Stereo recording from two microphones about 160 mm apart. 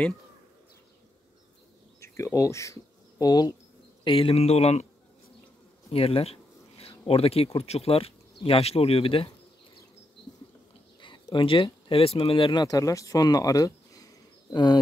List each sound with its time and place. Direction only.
2.0 s speech: 20° left (ahead or behind)
4.0 s speech: 35° left (ahead or behind)
5.9 s speech: 40° left (ahead or behind)
11.0 s speech: 30° left (ahead or behind)